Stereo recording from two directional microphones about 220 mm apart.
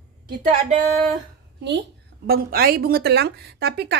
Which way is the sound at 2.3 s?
45° right (ahead or behind).